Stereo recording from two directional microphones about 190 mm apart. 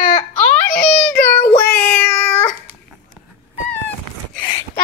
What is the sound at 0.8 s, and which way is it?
Child singing, 5° left (ahead or behind).